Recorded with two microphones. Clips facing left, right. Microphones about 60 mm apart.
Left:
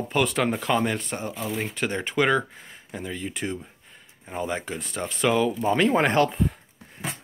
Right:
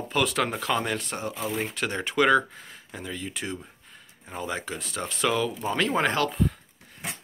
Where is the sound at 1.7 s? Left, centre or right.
Centre.